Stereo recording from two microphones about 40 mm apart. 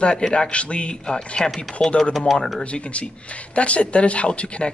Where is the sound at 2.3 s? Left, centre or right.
Centre.